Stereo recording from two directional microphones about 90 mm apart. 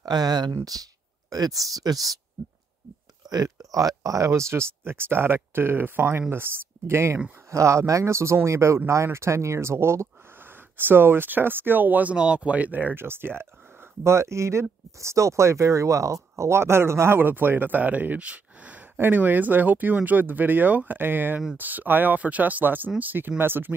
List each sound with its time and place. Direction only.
0.0 s speech: 50° right (ahead or behind)
3.3 s speech: 45° right (ahead or behind); by 23.7 s 20° right (ahead or behind)